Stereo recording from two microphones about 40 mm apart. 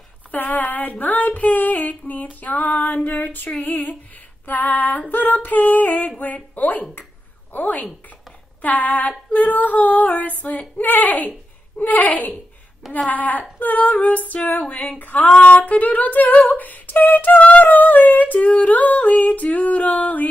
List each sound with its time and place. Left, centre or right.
0.3 s female singing: left